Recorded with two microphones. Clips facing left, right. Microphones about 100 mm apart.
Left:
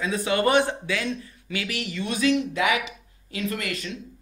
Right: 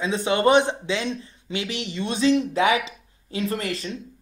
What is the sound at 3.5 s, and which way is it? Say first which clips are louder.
Speech: right 2 dB; 35° right (ahead or behind).